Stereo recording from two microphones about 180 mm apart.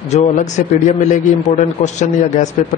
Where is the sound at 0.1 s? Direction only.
40° left (ahead or behind).